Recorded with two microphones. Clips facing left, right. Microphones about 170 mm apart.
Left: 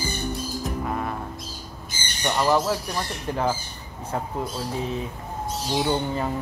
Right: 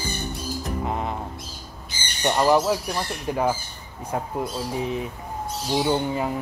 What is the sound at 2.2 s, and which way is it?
Speech, 15° right (ahead or behind).